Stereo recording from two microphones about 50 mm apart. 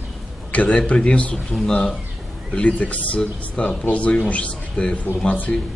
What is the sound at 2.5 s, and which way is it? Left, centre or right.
Speech, left.